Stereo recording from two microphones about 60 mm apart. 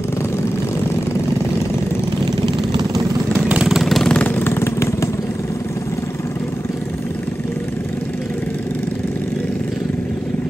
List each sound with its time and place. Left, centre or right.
3.8 s vehicle: centre
4.2 s vehicle: left
4.6 s vehicle: left